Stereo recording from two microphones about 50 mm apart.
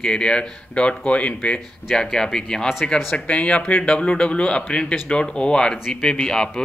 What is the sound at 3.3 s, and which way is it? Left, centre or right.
Speech, left.